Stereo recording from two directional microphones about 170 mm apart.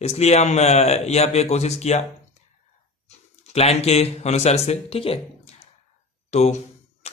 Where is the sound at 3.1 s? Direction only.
40° left (ahead or behind).